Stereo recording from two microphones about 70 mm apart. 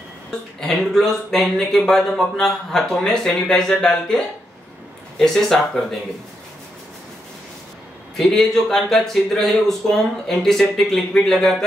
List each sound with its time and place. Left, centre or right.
0.6 s speech: centre
5.2 s speech: centre
8.2 s speech: centre